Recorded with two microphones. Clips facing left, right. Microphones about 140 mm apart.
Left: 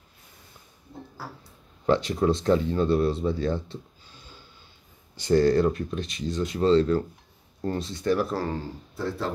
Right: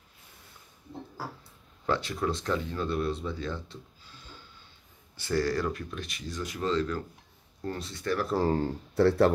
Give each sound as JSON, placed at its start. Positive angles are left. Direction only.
{"t": 1.9, "sound": "speech", "side_deg": 25}
{"t": 8.9, "sound": "speech", "side_deg": -70}